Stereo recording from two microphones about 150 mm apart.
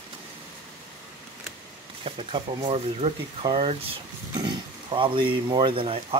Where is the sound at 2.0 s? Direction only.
35° right (ahead or behind).